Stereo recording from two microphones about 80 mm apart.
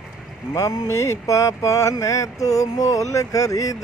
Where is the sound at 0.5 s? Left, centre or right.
Left.